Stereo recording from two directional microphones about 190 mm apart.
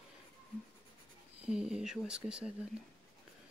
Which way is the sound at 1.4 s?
5° right (ahead or behind).